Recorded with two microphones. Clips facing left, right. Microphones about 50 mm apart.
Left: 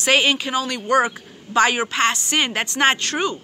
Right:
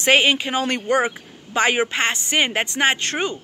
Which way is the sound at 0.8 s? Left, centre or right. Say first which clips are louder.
Left 2 dB; right.